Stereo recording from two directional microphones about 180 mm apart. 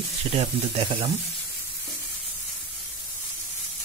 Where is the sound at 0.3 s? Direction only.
30° right (ahead or behind).